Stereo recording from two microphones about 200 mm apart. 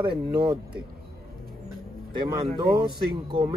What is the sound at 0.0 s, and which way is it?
Speech, 25° right (ahead or behind).